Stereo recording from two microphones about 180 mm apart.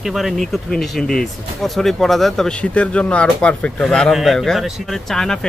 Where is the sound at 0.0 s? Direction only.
Centre (ahead or behind).